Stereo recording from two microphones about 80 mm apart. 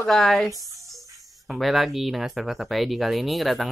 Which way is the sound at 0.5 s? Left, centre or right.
Right.